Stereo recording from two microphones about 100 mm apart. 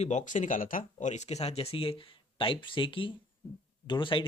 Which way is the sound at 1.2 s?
90° left.